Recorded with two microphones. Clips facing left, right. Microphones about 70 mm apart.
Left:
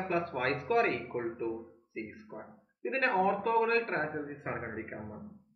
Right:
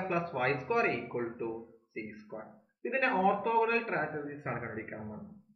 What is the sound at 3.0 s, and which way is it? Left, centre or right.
Speech, left.